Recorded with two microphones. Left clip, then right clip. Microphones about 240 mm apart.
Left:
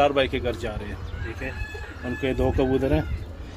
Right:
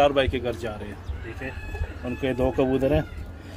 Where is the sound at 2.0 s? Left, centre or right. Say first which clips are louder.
Even; centre.